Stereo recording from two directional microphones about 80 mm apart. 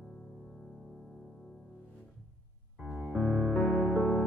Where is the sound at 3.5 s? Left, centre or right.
Left.